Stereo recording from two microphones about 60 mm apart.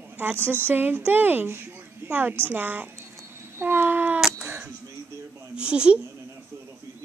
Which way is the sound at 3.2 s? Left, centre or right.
Right.